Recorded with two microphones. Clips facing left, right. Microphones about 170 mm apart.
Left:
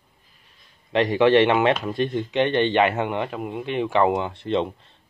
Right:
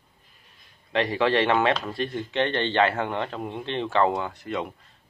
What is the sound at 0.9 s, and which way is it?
A man's voice, 20° left (ahead or behind).